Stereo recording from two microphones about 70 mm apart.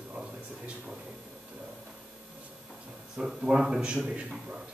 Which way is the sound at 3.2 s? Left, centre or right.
Centre.